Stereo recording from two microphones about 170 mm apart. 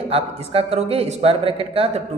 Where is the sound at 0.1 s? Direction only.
35° right (ahead or behind).